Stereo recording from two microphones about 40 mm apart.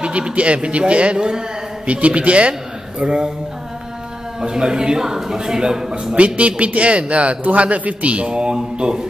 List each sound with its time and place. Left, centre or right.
0.0 s speech: right
4.4 s a man's voice: centre
6.1 s speech: right